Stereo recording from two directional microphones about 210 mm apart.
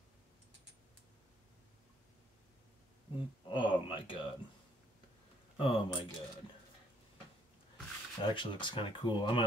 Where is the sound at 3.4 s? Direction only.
20° left (ahead or behind).